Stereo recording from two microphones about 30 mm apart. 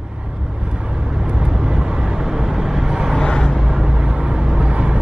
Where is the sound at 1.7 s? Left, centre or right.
Right.